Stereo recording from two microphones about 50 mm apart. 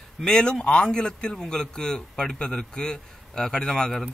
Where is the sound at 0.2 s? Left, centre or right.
Centre.